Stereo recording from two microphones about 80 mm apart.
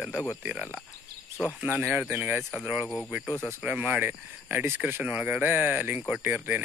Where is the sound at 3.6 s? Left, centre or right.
Centre.